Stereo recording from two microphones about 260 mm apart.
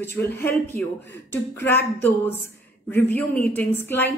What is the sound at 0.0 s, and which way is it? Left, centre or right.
A woman's voice, centre.